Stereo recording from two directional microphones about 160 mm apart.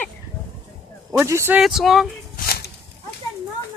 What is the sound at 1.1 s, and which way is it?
Speech, 15° right (ahead or behind).